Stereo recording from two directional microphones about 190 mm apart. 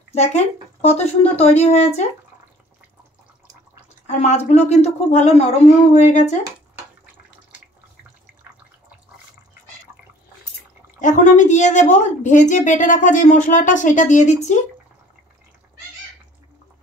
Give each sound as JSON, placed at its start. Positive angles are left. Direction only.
{"t": 0.1, "sound": "a woman's voice", "side_deg": 35}
{"t": 4.1, "sound": "a woman's voice", "side_deg": 35}
{"t": 11.0, "sound": "a woman's voice", "side_deg": 40}